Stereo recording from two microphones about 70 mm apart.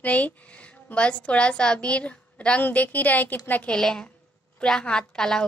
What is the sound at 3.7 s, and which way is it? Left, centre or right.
A woman's voice, centre.